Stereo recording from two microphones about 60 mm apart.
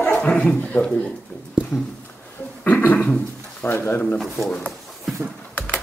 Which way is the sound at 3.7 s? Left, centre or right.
Left.